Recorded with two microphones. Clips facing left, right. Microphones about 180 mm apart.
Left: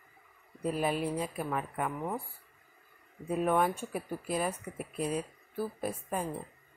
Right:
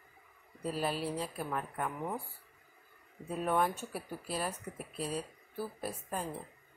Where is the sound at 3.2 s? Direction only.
5° left (ahead or behind).